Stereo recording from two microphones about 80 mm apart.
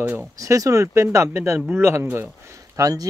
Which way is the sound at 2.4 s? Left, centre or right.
Right.